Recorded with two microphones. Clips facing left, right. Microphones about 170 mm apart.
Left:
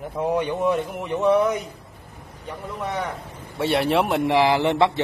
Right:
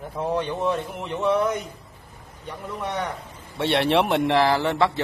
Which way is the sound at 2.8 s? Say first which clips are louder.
Left 1 dB; 10° left (ahead or behind).